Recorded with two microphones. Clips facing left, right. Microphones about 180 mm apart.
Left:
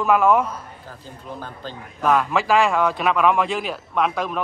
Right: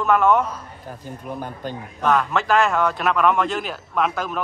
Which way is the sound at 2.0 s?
Centre (ahead or behind).